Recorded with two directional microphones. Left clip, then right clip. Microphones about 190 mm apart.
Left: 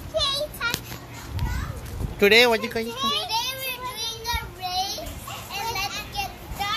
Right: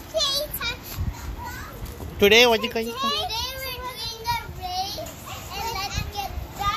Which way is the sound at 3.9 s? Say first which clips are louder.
Right 1 dB; 15° left (ahead or behind).